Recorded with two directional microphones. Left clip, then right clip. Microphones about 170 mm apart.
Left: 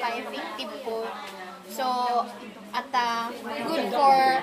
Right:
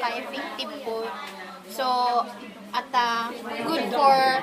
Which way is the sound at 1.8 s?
5° left (ahead or behind).